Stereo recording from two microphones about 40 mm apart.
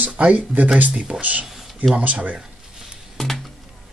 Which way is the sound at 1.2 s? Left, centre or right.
Right.